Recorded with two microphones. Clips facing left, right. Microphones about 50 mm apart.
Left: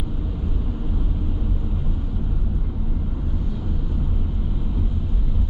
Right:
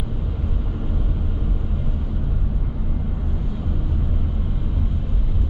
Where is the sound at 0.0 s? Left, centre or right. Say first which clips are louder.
Even; centre.